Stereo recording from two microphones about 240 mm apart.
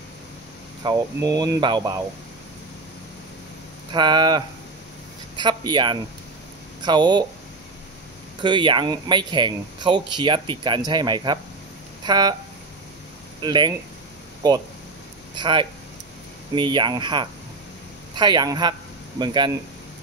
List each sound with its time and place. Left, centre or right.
0.8 s speech: centre
3.9 s speech: centre
8.4 s speech: centre
13.4 s speech: centre